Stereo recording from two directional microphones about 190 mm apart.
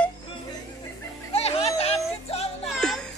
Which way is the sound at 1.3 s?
30° left (ahead or behind).